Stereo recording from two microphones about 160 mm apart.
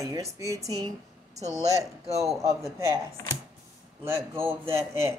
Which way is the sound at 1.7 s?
20° right (ahead or behind).